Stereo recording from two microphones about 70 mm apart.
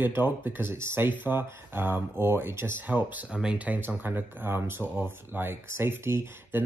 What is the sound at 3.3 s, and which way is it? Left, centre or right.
Speech, centre.